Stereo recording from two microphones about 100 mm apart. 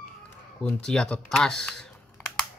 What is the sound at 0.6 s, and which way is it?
Speech, 10° left (ahead or behind).